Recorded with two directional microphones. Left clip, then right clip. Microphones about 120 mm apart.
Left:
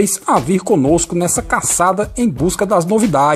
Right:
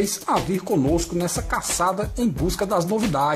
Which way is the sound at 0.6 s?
50° left (ahead or behind).